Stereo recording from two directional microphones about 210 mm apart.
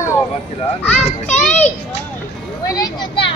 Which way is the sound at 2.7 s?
20° left (ahead or behind).